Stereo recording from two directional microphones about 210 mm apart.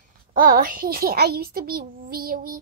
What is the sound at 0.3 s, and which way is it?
A child's voice, 40° right (ahead or behind).